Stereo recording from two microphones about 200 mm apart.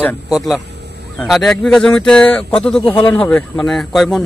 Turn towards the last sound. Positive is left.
turn(degrees=0)  # may be behind; listen again after turning